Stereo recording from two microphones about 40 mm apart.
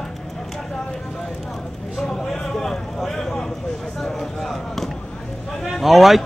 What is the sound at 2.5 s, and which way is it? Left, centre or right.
Vehicle, centre.